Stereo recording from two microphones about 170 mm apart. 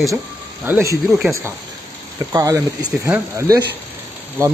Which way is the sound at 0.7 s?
15° right (ahead or behind).